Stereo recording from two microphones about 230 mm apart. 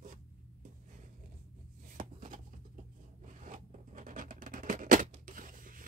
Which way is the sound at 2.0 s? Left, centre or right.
Right.